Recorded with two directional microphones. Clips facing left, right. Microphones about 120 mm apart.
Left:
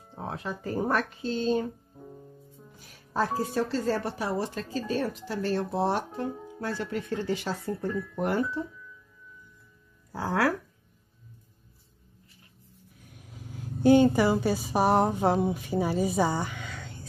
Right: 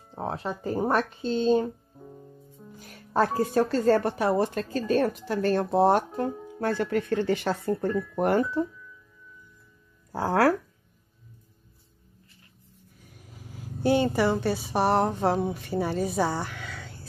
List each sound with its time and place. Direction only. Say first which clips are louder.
0.2 s speech: right 4 dB; 30° right (ahead or behind)
1.2 s speech: right 4 dB; centre (ahead or behind)
2.0 s music: even; centre (ahead or behind)
2.9 s music: right 4 dB; 60° right (ahead or behind)
3.5 s speech: right 8 dB; 55° right (ahead or behind)
6.3 s music: right 2 dB; centre (ahead or behind)
6.6 s speech: right 6 dB; 55° right (ahead or behind)
7.9 s speech: right 4 dB; centre (ahead or behind)
8.2 s speech: right 4 dB; 50° right (ahead or behind)
10.1 s speech: right 4 dB; 45° right (ahead or behind)
12.9 s a woman's voice: left 1 dB; centre (ahead or behind)